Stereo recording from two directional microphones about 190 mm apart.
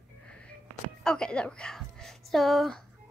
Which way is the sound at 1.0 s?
5° left (ahead or behind).